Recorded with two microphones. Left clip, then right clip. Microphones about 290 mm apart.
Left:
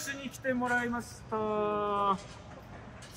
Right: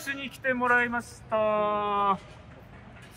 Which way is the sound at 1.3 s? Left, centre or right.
Right.